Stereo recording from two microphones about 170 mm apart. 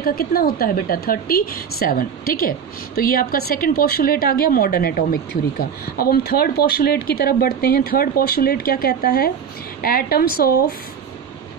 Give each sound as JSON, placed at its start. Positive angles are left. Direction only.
{"t": 0.0, "sound": "speech", "side_deg": 60}